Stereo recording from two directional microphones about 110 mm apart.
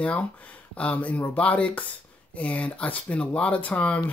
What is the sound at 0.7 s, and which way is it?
Speech, 15° left (ahead or behind).